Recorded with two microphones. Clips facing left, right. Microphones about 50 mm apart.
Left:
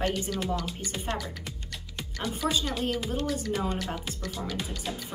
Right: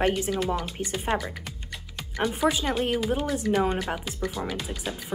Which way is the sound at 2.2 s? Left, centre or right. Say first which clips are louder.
Right 5 dB; centre.